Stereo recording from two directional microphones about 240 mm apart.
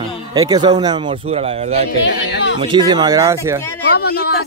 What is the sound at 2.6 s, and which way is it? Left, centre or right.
A man's voice, centre.